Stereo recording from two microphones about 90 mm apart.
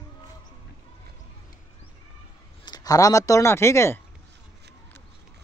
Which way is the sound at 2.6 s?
45° left (ahead or behind).